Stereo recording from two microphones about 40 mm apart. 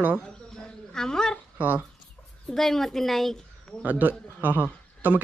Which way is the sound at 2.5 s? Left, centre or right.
Centre.